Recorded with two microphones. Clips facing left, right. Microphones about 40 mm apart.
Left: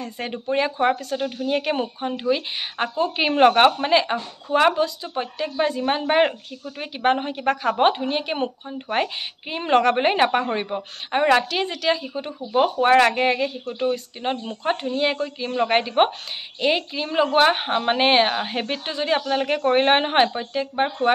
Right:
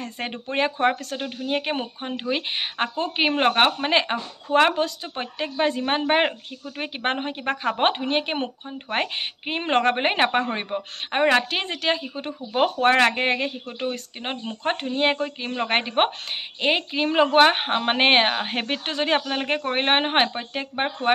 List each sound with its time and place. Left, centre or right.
0.0 s a woman's voice: right
3.3 s speech: centre
3.8 s a woman's voice: right
15.0 s a woman's voice: right
17.5 s a woman's voice: right
18.9 s a woman's voice: right
19.2 s a woman's voice: right